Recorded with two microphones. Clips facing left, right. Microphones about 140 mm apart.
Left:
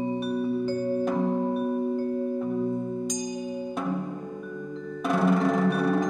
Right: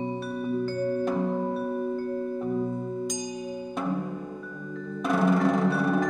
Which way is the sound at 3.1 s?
Centre (ahead or behind).